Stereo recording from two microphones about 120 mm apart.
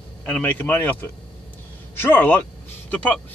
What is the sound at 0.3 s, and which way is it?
A man's voice, 10° left (ahead or behind).